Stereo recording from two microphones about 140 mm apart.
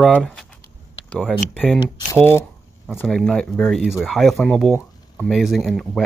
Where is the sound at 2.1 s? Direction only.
20° left (ahead or behind).